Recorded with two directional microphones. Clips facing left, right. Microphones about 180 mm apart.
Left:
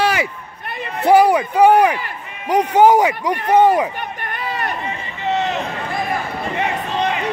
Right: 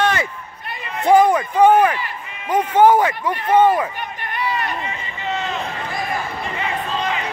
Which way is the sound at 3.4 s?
40° left (ahead or behind).